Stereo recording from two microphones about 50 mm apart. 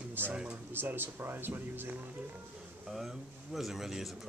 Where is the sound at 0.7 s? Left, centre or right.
Right.